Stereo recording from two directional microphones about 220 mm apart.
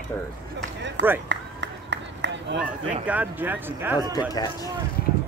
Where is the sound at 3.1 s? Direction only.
10° right (ahead or behind).